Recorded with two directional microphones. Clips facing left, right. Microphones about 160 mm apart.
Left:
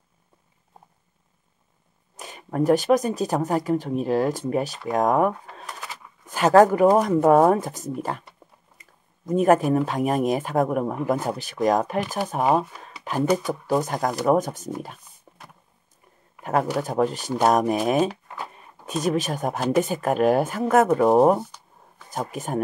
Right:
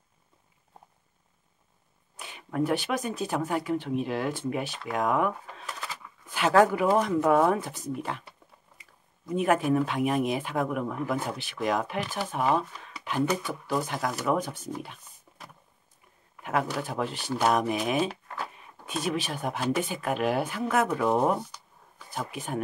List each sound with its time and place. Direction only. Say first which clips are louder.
2.1 s speech: left 4 dB; 40° left (ahead or behind)
15.3 s a sound: left 4 dB; 45° left (ahead or behind)
16.4 s speech: left 6 dB; 40° left (ahead or behind)